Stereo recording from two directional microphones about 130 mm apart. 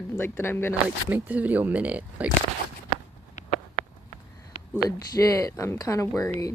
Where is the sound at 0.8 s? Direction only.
10° right (ahead or behind).